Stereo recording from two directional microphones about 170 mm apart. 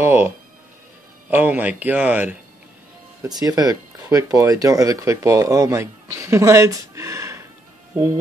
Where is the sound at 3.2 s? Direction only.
20° right (ahead or behind).